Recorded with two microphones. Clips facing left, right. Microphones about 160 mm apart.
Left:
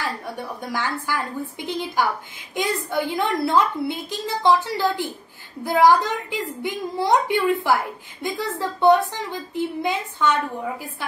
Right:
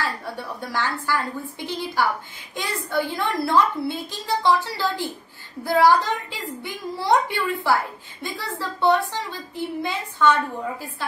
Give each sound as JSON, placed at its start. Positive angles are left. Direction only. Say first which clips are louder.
{"t": 0.6, "sound": "a woman's voice", "louder": "right 1 dB", "side_deg": 15}